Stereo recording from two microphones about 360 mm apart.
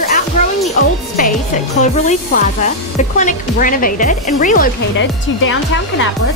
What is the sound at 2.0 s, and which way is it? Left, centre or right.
Speech, centre.